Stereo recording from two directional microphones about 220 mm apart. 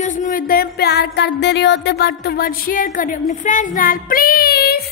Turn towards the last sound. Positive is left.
turn(degrees=45)  # may be behind; listen again after turning